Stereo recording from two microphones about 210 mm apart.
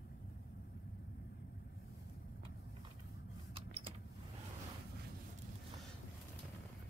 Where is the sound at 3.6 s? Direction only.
25° right (ahead or behind).